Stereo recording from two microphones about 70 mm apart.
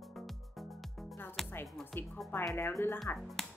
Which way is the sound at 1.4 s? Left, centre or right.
Centre.